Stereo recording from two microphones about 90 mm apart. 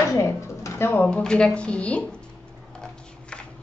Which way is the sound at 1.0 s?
10° left (ahead or behind).